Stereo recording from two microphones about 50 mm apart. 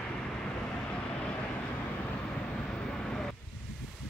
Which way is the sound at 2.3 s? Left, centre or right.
Centre.